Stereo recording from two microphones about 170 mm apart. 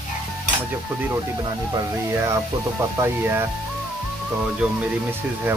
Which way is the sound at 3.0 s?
15° right (ahead or behind).